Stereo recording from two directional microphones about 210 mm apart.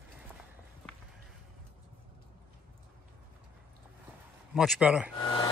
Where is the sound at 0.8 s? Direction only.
5° left (ahead or behind).